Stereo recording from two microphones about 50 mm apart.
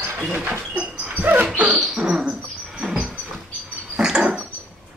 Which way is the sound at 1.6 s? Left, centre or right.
Right.